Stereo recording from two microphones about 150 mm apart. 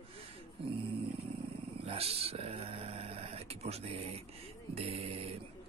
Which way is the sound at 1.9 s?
40° right (ahead or behind).